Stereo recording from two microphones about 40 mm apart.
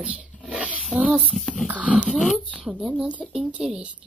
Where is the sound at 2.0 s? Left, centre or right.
Centre.